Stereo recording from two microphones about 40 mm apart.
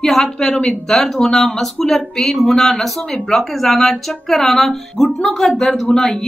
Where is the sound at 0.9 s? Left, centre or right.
Centre.